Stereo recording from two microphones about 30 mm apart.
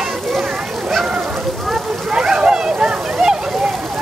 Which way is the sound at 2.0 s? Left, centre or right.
Right.